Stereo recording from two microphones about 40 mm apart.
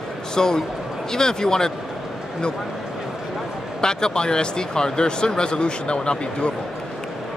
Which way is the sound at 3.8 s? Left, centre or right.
Centre.